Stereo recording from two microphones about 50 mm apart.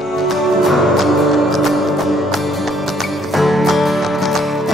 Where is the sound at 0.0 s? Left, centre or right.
Centre.